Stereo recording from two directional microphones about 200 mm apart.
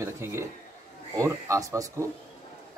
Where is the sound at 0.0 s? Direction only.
15° right (ahead or behind).